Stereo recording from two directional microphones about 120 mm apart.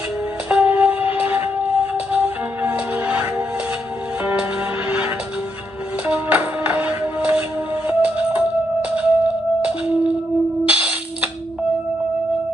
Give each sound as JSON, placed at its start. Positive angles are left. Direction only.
{"t": 0.5, "sound": "music", "side_deg": -15}